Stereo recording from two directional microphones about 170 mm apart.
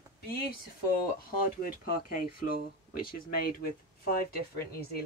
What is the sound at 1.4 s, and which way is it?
Speech, 55° left (ahead or behind).